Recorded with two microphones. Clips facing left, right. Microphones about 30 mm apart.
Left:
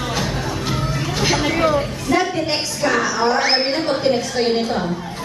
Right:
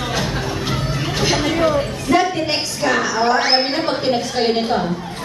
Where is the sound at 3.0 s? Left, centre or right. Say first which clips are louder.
Right 1 dB; right.